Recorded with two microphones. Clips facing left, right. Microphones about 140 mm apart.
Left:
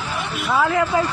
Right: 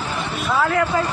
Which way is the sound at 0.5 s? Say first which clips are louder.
Left 1 dB; 10° left (ahead or behind).